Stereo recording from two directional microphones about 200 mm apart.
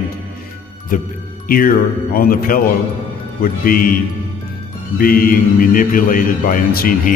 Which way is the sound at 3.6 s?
45° left (ahead or behind).